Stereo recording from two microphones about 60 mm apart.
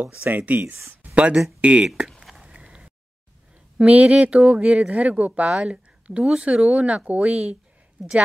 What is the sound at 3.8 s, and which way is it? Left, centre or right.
Speech, right.